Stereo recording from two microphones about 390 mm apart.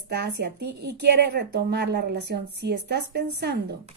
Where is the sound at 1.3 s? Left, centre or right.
Right.